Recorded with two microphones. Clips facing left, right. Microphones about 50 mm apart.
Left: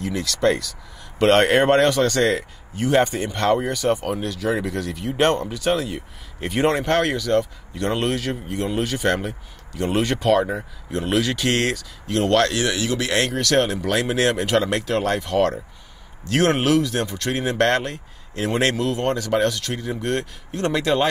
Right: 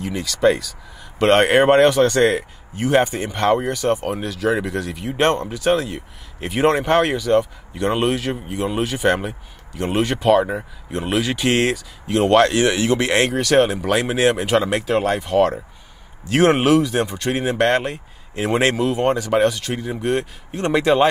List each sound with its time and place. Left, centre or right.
0.0 s speech: centre
3.5 s speech: centre; by 13.3 s right
13.3 s speech: centre